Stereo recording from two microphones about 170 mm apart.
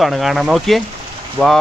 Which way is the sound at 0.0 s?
Centre (ahead or behind).